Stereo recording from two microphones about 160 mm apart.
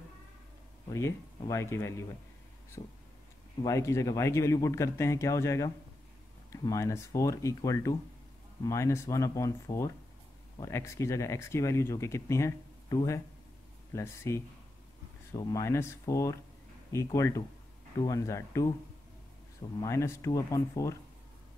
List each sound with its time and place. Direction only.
0.8 s speech: 20° left (ahead or behind)
3.6 s a man's voice: 20° left (ahead or behind)
19.8 s a man's voice: 20° left (ahead or behind)